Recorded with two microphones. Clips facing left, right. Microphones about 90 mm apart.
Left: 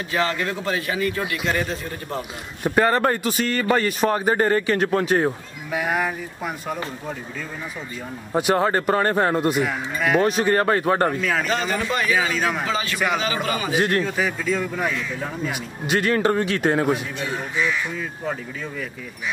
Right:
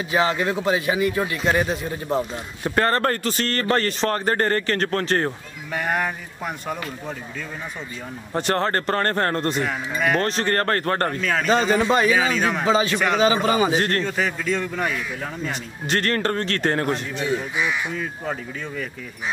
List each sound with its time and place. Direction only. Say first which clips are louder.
0.1 s a man's voice: right 3 dB; 15° right (ahead or behind)
2.6 s a man's voice: left 2 dB; 10° left (ahead or behind)
8.3 s a man's voice: left 3 dB; 10° left (ahead or behind)
11.4 s speech: right 5 dB; 25° right (ahead or behind)
12.4 s a man's voice: right 1 dB; centre (ahead or behind)
12.6 s speech: right 4 dB; 25° right (ahead or behind)
13.7 s a man's voice: left 1 dB; 10° left (ahead or behind)